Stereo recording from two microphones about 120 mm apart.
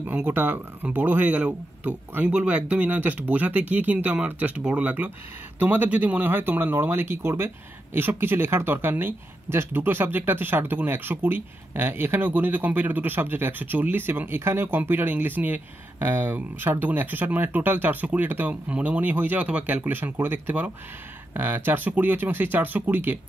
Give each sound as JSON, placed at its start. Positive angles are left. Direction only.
{"t": 0.0, "sound": "speech", "side_deg": -15}